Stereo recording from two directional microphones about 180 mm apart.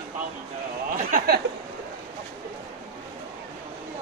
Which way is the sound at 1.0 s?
55° right (ahead or behind).